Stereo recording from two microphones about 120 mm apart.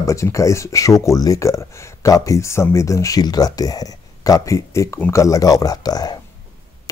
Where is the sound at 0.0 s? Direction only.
25° left (ahead or behind).